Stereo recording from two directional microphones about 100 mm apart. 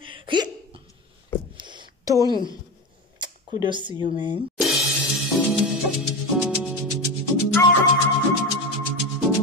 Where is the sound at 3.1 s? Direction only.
50° right (ahead or behind).